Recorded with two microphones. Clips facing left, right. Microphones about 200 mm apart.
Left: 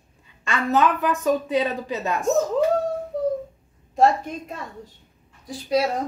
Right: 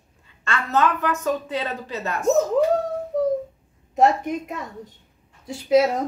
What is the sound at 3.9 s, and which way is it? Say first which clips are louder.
A woman's voice: right 1 dB; 20° right (ahead or behind).